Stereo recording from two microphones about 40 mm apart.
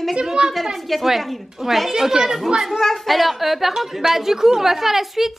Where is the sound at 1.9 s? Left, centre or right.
Centre.